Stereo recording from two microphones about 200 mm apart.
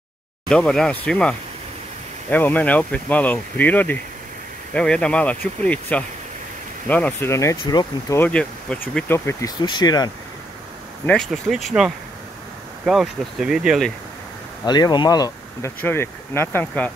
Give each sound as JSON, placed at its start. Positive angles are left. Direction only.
{"t": 0.5, "sound": "speech", "side_deg": 5}
{"t": 8.2, "sound": "speech", "side_deg": 5}
{"t": 11.1, "sound": "speech", "side_deg": 0}
{"t": 14.6, "sound": "speech", "side_deg": 20}